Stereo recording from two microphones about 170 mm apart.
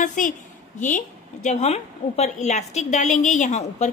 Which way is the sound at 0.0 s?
50° left (ahead or behind).